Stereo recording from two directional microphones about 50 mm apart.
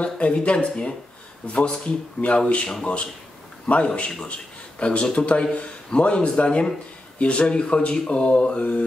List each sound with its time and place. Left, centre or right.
0.0 s a man's voice: left